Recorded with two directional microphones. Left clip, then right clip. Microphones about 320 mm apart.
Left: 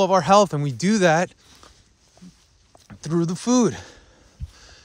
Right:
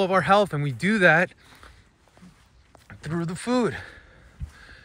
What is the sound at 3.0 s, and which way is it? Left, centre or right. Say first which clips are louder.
Speech: left 6 dB; centre.